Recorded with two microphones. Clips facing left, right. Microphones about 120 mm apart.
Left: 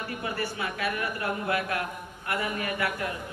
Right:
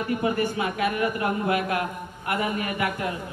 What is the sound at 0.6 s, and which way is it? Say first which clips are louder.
A man's voice: right 6 dB; 20° right (ahead or behind).